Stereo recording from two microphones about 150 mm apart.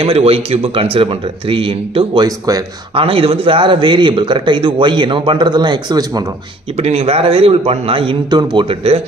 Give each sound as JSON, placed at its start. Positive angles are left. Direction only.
{"t": 0.0, "sound": "speech", "side_deg": -40}
{"t": 2.2, "sound": "speech", "side_deg": -25}
{"t": 2.9, "sound": "speech", "side_deg": -40}
{"t": 6.8, "sound": "speech", "side_deg": -40}